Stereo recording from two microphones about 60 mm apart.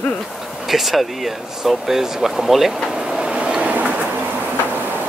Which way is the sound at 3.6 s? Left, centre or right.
Right.